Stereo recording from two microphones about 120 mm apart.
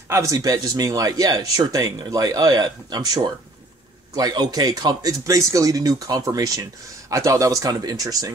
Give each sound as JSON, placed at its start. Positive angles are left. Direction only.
{"t": 0.1, "sound": "speech", "side_deg": -25}
{"t": 4.1, "sound": "speech", "side_deg": -35}